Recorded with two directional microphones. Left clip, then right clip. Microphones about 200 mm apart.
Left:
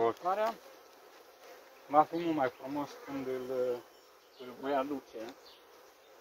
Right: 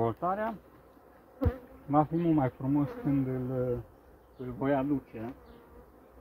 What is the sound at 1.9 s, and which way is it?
Speech, 25° right (ahead or behind).